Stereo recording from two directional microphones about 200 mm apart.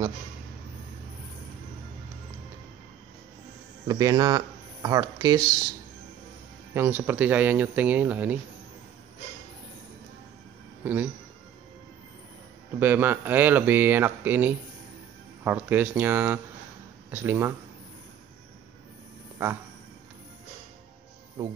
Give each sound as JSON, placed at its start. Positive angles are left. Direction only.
{"t": 3.8, "sound": "speech", "side_deg": -20}
{"t": 6.7, "sound": "speech", "side_deg": -10}
{"t": 10.8, "sound": "speech", "side_deg": -10}
{"t": 12.7, "sound": "speech", "side_deg": -10}